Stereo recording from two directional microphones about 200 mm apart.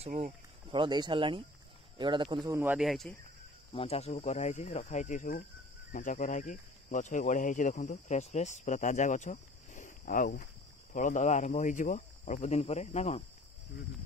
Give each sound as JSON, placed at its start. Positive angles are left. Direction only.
{"t": 0.0, "sound": "speech", "side_deg": -30}
{"t": 2.5, "sound": "speech", "side_deg": -10}
{"t": 3.7, "sound": "speech", "side_deg": 30}